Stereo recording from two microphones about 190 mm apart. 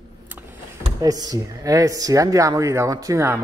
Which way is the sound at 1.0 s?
20° right (ahead or behind).